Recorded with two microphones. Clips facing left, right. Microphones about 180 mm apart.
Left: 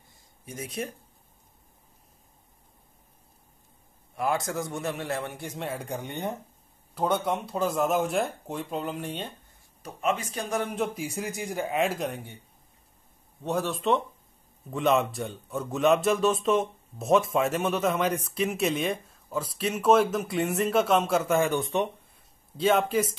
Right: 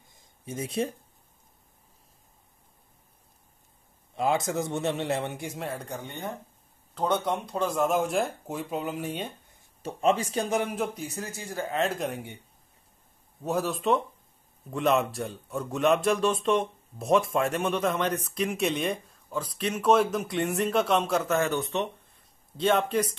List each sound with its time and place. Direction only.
0.5 s a man's voice: 30° right (ahead or behind)
4.1 s a man's voice: 20° right (ahead or behind)
5.5 s speech: centre (ahead or behind)
5.8 s speech: 15° left (ahead or behind)
7.0 s speech: 5° left (ahead or behind)
9.8 s a man's voice: 30° right (ahead or behind)
10.6 s speech: 10° right (ahead or behind)
11.0 s speech: 10° left (ahead or behind)
13.4 s speech: centre (ahead or behind)